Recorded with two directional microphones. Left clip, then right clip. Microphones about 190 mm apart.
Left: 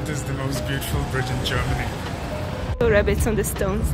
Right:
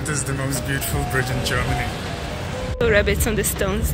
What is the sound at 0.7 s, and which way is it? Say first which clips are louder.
Speech: right 3 dB; 30° right (ahead or behind).